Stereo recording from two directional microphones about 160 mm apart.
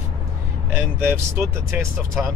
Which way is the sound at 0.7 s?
15° right (ahead or behind).